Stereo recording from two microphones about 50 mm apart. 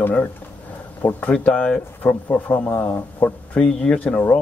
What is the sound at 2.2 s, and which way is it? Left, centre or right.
Speech, left.